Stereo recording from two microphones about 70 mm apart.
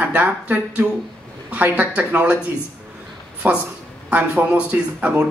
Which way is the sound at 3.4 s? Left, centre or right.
Right.